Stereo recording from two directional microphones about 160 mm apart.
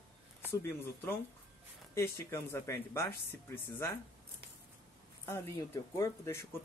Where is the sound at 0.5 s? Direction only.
15° left (ahead or behind).